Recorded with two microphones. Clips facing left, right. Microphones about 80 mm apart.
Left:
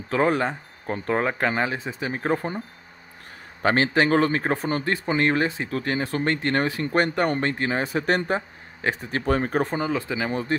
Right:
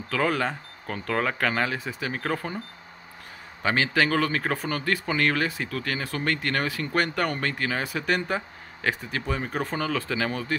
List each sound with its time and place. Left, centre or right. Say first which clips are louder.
0.1 s speech: left 4 dB; left
3.6 s speech: left 3 dB; left
9.2 s speech: left 8 dB; left
9.7 s speech: left 2 dB; left